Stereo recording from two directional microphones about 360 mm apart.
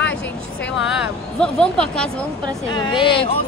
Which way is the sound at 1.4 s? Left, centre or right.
Centre.